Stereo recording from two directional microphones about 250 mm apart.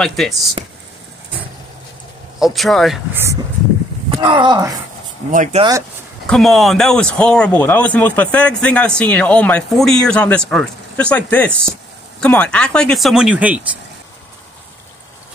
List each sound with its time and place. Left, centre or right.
0.0 s a man's voice: centre
2.4 s a man's voice: centre
4.2 s speech: centre
5.3 s speech: right
6.2 s a man's voice: centre